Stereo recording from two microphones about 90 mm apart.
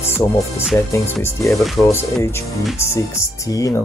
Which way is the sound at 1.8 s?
5° left (ahead or behind).